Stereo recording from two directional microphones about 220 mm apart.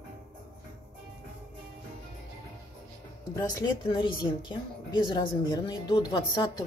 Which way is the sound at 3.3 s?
20° left (ahead or behind).